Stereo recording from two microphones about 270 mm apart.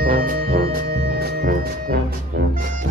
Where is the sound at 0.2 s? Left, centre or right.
Right.